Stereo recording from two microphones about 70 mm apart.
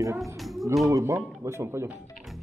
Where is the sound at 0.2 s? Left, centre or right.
Centre.